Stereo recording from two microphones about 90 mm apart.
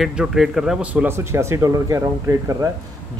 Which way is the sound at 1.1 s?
30° right (ahead or behind).